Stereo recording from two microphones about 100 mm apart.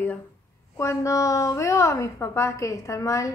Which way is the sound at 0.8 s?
30° left (ahead or behind).